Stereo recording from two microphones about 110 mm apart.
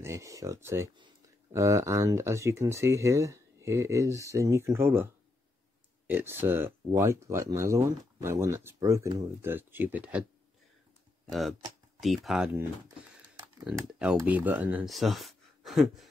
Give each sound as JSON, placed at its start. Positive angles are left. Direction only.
{"t": 0.0, "sound": "speech", "side_deg": -25}
{"t": 6.0, "sound": "speech", "side_deg": -20}
{"t": 9.4, "sound": "speech", "side_deg": -20}
{"t": 11.2, "sound": "speech", "side_deg": 0}
{"t": 13.7, "sound": "speech", "side_deg": -10}
{"t": 14.9, "sound": "speech", "side_deg": 0}